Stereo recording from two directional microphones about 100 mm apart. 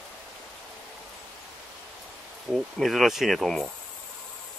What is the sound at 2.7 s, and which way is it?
Speech, centre (ahead or behind).